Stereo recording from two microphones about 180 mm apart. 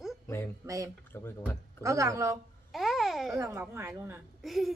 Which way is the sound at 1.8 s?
15° right (ahead or behind).